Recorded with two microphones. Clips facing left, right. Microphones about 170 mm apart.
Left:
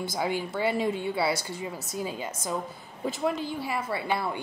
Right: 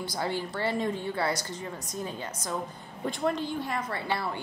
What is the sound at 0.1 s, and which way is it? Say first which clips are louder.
Speech: left 1 dB; 10° left (ahead or behind).